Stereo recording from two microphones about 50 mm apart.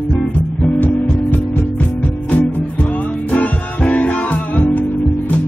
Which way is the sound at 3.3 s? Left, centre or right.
Left.